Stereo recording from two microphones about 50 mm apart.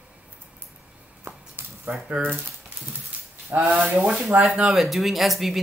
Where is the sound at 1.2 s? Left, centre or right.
Right.